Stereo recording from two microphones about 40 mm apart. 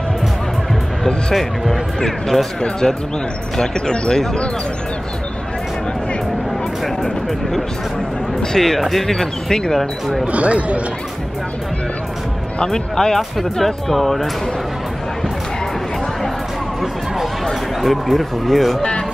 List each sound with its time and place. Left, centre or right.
1.3 s speech: centre
3.5 s speech: centre
8.5 s speech: centre
10.2 s speech: right
12.6 s speech: centre
17.8 s speech: centre
18.8 s music: left